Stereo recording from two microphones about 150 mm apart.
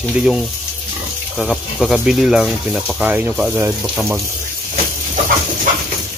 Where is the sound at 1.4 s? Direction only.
Centre (ahead or behind).